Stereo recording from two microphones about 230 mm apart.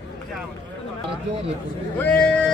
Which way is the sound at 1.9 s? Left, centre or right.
Centre.